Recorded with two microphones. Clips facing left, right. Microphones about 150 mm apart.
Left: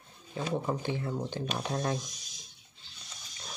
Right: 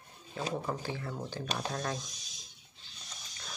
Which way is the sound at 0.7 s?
25° left (ahead or behind).